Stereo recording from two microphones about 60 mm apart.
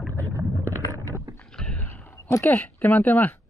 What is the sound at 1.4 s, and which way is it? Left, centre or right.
Rowboat, centre.